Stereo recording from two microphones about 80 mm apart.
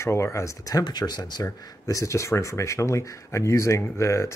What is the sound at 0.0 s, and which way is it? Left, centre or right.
Speech, left.